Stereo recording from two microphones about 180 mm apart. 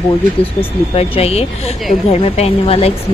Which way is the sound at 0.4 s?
30° left (ahead or behind).